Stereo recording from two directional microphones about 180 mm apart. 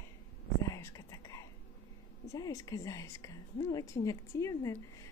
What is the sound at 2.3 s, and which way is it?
A woman's voice, 20° left (ahead or behind).